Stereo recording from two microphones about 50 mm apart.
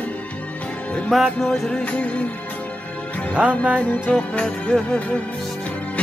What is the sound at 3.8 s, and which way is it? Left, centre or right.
Music, left.